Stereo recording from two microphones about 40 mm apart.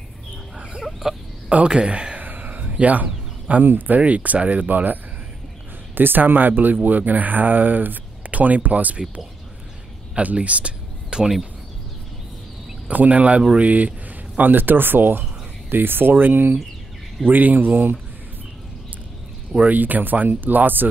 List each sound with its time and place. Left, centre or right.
1.0 s speech: centre
1.7 s speech: right
2.2 s a sound: right
2.7 s speech: right
3.6 s speech: right
5.9 s speech: right
10.1 s speech: right
12.8 s speech: right
13.6 s a sound: right
14.5 s speech: right
17.3 s speech: right
19.5 s speech: right